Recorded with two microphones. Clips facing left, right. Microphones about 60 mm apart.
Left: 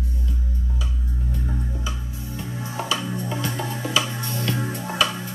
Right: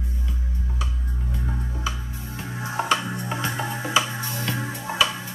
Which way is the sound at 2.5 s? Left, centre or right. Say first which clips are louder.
Right 4 dB; right.